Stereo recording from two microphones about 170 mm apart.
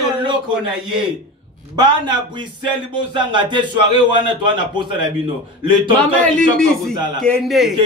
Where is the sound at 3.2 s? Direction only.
25° right (ahead or behind).